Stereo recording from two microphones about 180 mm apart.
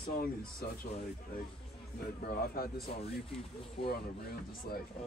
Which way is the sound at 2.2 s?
55° left (ahead or behind).